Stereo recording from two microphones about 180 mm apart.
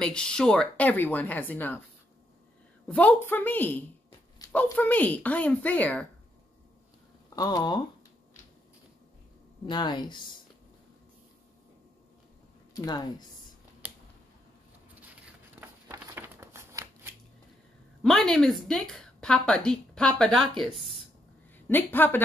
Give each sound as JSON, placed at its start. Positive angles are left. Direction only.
{"t": 0.0, "sound": "speech", "side_deg": 5}
{"t": 2.9, "sound": "speech", "side_deg": 5}
{"t": 7.2, "sound": "speech", "side_deg": 20}
{"t": 9.7, "sound": "speech", "side_deg": 25}
{"t": 12.7, "sound": "speech", "side_deg": 20}
{"t": 13.8, "sound": "scissors", "side_deg": -10}
{"t": 15.6, "sound": "a sound", "side_deg": -15}
{"t": 18.0, "sound": "a woman's voice", "side_deg": 5}
{"t": 21.6, "sound": "speech", "side_deg": 10}